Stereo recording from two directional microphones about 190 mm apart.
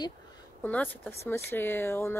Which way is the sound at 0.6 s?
10° left (ahead or behind).